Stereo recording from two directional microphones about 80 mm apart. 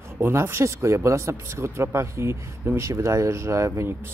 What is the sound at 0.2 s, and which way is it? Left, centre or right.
Speech, right.